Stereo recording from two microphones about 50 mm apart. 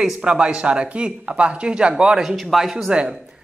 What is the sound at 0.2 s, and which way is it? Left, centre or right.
Speech, right.